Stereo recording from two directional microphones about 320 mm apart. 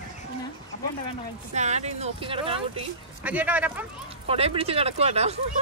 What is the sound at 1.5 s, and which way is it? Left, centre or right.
Speech, right.